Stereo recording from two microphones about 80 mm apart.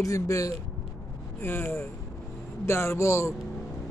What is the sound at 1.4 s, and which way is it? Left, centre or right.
Speech, left.